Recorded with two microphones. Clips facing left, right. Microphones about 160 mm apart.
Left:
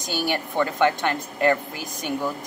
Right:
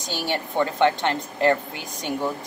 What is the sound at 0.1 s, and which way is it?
A woman's voice, 25° right (ahead or behind).